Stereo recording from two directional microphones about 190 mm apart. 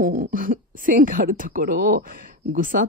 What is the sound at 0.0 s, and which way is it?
Speech, 45° right (ahead or behind).